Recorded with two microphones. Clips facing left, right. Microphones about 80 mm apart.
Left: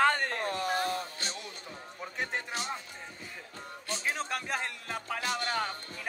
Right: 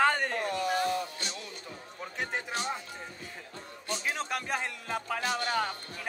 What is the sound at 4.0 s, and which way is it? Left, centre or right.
A man's voice, centre.